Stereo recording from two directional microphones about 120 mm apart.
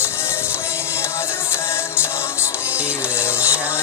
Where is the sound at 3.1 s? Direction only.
20° left (ahead or behind).